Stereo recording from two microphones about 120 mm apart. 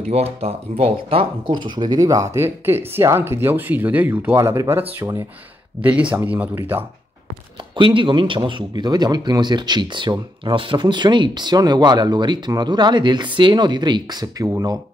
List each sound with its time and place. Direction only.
0.1 s speech: 55° right (ahead or behind); by 6.6 s 10° right (ahead or behind)
7.7 s speech: 45° right (ahead or behind)